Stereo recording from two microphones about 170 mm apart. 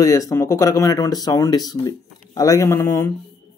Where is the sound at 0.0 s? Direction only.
20° left (ahead or behind).